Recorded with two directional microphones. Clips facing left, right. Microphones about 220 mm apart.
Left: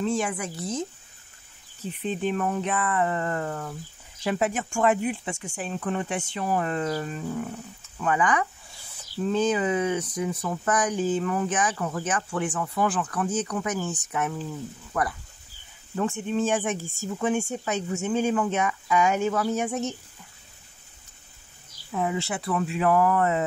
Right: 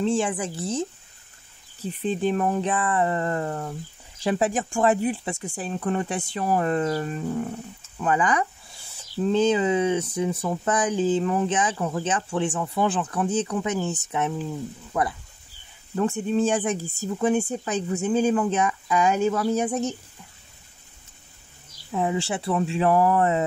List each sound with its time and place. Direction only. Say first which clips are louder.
0.0 s speech: right 3 dB; 30° right (ahead or behind)
16.0 s speech: right 3 dB; 35° right (ahead or behind)
21.9 s speech: right 2 dB; 30° right (ahead or behind)